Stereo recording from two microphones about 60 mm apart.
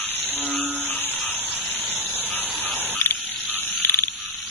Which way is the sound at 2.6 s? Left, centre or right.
Right.